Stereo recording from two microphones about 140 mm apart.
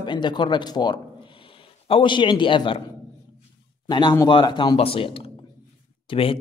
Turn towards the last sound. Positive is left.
turn(degrees=40)  # may be behind; listen again after turning